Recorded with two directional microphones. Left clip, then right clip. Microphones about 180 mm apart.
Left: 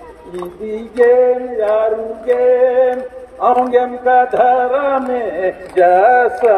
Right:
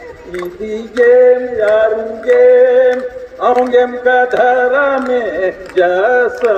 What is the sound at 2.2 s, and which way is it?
A man's voice, 40° right (ahead or behind).